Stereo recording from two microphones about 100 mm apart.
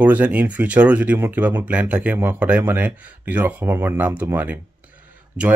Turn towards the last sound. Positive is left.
turn(degrees=-10)  # may be behind; listen again after turning